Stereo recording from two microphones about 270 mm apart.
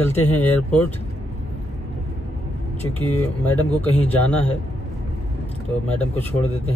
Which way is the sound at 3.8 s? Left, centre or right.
Centre.